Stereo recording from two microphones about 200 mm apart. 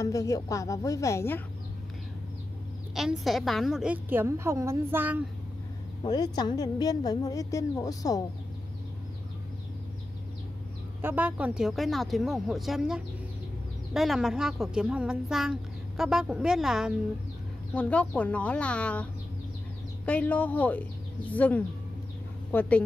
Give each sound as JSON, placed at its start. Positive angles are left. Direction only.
{"t": 0.0, "sound": "speech", "side_deg": 15}
{"t": 2.9, "sound": "a woman's voice", "side_deg": 0}
{"t": 6.0, "sound": "a woman's voice", "side_deg": 20}
{"t": 11.0, "sound": "speech", "side_deg": -10}
{"t": 20.1, "sound": "speech", "side_deg": 5}